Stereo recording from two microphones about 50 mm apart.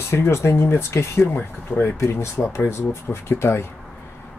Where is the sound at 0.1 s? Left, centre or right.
Left.